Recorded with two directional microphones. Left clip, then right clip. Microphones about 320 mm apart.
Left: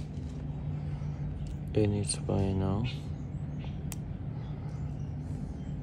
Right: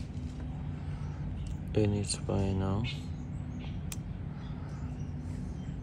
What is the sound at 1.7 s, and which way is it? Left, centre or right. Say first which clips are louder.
Speech: left 1 dB; centre.